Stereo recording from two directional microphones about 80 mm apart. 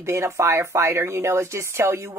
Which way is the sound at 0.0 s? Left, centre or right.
Right.